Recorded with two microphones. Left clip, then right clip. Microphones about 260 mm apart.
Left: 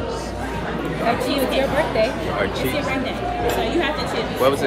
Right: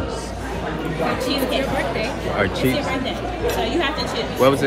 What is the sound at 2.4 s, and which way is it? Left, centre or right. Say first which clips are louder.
Speech: right 4 dB; right.